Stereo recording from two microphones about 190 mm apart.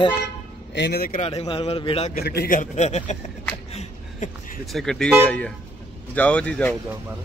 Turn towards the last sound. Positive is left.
turn(degrees=5)  # may be behind; listen again after turning